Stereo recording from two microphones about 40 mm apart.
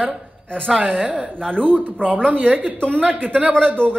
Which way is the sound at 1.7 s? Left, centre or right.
Left.